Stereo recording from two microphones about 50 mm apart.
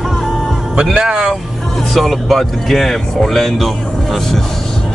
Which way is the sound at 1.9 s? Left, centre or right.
Centre.